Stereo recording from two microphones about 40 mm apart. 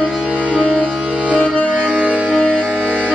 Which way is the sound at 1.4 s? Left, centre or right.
Left.